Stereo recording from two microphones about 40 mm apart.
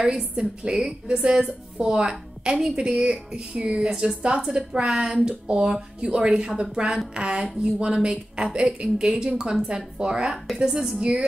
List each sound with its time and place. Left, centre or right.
0.0 s a woman's voice: centre
2.5 s a woman's voice: centre
2.8 s a woman's voice: right
11.0 s a woman's voice: right